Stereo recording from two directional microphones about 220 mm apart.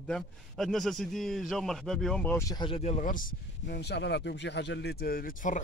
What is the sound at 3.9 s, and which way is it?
Speech, 50° left (ahead or behind).